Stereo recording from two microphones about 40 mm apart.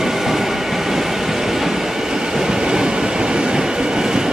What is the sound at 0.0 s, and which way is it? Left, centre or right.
Train, centre.